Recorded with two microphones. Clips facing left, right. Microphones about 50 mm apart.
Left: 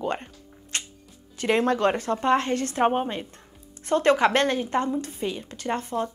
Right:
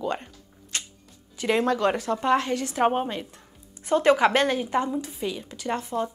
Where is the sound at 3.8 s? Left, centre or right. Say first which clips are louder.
Right 1 dB; centre.